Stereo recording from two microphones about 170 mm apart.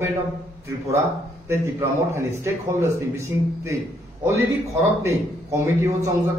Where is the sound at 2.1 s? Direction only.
15° right (ahead or behind).